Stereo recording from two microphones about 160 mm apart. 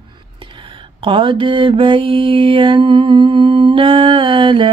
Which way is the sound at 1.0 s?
35° right (ahead or behind).